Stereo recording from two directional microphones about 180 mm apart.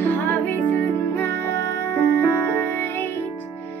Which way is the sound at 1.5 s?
60° right (ahead or behind).